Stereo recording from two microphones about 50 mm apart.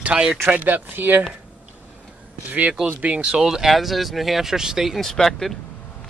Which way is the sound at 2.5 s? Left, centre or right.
Right.